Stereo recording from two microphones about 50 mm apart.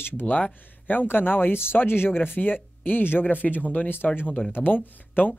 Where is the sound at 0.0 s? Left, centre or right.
Left.